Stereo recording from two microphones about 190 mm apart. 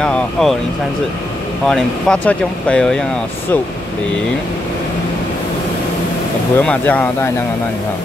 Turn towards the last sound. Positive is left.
turn(degrees=10)  # may be behind; listen again after turning